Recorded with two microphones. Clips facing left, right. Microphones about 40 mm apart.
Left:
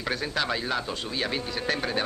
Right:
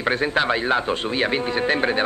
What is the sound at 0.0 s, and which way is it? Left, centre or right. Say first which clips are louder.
Speech: right 8 dB; right.